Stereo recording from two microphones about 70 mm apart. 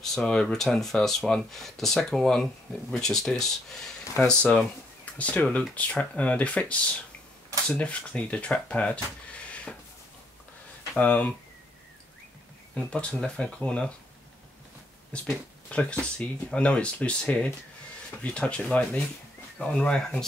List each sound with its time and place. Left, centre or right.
0.0 s speech: centre
11.0 s speech: left
12.7 s speech: centre
15.1 s speech: centre